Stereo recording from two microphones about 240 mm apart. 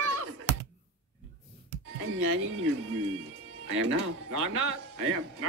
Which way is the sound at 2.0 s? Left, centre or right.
Right.